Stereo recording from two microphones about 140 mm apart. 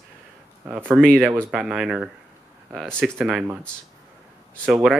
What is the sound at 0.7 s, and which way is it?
Speech, 15° right (ahead or behind).